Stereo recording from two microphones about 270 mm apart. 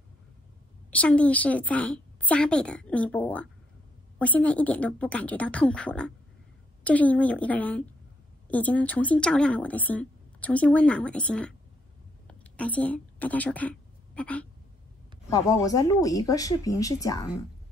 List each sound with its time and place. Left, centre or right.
0.8 s a woman's voice: centre